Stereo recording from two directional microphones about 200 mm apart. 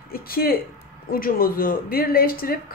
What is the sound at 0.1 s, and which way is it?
A woman's voice, 50° left (ahead or behind).